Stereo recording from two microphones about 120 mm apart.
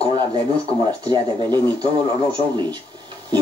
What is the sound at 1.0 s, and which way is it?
Speech, 35° right (ahead or behind).